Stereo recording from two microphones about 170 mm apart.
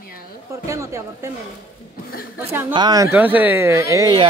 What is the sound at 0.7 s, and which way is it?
Speech, 20° right (ahead or behind).